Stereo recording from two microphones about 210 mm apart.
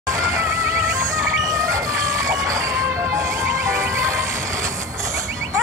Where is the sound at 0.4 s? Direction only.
15° right (ahead or behind).